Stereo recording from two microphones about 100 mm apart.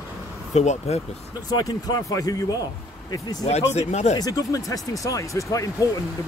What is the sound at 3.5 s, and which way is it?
Speech, 90° left.